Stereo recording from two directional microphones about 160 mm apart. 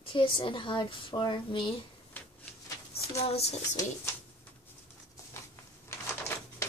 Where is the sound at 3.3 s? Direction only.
40° left (ahead or behind).